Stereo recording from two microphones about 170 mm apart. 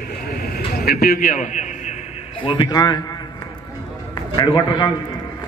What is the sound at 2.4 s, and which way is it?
Speech, 30° left (ahead or behind).